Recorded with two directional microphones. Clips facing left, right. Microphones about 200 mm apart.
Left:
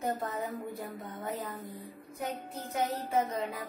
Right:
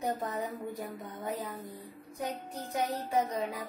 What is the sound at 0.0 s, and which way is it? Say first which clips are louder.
A woman's voice: even; 15° right (ahead or behind).